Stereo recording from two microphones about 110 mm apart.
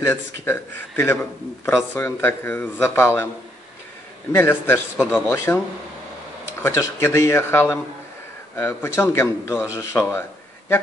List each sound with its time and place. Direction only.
0.0 s a man's voice: 20° left (ahead or behind)
4.3 s a man's voice: 20° left (ahead or behind)
6.6 s a man's voice: 25° left (ahead or behind)